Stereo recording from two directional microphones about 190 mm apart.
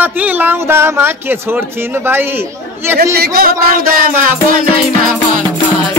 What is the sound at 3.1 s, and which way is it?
Music, 55° right (ahead or behind).